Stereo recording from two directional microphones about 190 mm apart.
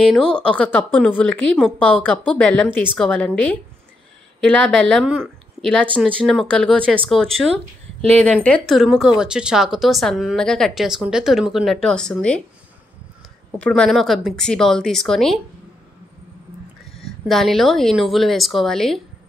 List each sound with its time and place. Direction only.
0.1 s a woman's voice: 5° left (ahead or behind)
4.4 s speech: 5° left (ahead or behind)
13.6 s speech: 5° left (ahead or behind)
17.0 s speech: centre (ahead or behind)